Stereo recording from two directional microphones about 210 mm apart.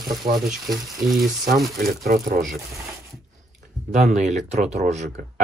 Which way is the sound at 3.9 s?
35° right (ahead or behind).